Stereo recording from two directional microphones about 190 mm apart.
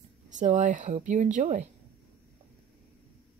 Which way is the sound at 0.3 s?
40° right (ahead or behind).